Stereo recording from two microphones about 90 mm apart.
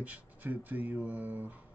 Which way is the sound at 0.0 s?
20° right (ahead or behind).